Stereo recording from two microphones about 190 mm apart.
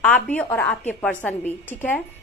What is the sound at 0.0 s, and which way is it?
A woman's voice, 5° left (ahead or behind).